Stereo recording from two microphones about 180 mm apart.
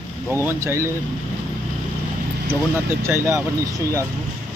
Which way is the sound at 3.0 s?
15° right (ahead or behind).